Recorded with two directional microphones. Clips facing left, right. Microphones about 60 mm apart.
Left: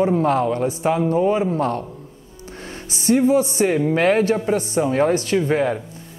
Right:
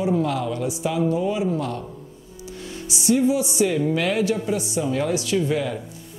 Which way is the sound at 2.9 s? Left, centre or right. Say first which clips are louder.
Left 3 dB; left.